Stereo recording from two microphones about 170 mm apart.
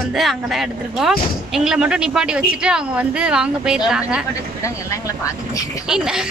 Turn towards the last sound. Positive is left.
turn(degrees=-5)  # may be behind; listen again after turning